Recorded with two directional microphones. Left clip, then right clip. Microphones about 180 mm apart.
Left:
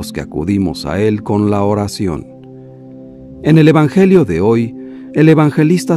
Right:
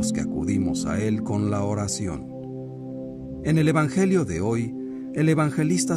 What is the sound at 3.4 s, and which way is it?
Speech, 50° left (ahead or behind).